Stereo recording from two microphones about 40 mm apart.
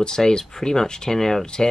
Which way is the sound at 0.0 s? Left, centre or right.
Centre.